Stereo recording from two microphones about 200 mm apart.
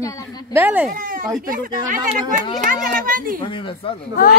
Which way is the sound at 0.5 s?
10° right (ahead or behind).